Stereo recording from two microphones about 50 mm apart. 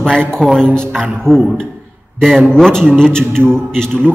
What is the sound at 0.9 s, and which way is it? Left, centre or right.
Speech, centre.